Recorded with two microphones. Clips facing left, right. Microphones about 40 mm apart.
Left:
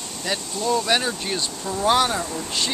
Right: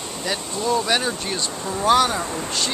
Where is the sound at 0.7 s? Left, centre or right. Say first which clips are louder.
Even; centre.